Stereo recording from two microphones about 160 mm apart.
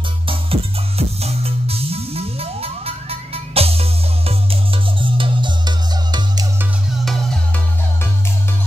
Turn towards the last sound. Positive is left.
turn(degrees=0)  # may be behind; listen again after turning